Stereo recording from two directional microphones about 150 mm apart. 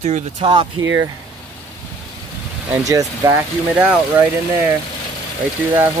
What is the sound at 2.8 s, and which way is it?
Speech, 20° right (ahead or behind).